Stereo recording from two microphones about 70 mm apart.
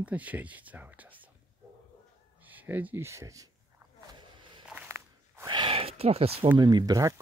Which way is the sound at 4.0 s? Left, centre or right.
Right.